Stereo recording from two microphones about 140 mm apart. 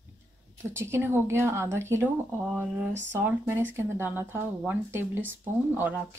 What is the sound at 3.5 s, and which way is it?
Speech, 15° right (ahead or behind).